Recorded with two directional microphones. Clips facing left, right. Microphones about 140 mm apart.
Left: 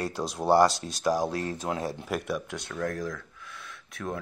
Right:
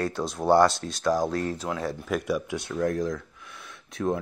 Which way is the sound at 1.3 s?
40° right (ahead or behind).